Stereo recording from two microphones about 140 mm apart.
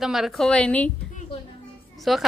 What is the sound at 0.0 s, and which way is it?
Speech, centre (ahead or behind).